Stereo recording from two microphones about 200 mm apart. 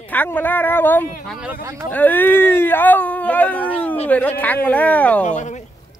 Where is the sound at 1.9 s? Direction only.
10° left (ahead or behind).